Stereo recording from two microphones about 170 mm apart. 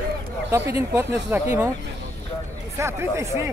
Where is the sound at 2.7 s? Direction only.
15° right (ahead or behind).